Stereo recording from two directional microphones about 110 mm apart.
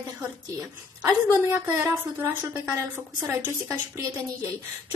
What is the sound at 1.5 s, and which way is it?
A woman's voice, 20° right (ahead or behind).